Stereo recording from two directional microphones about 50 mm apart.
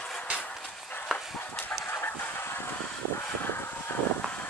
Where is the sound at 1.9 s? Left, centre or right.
Left.